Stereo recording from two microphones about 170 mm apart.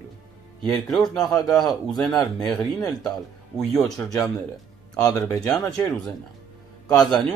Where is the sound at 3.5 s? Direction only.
5° left (ahead or behind).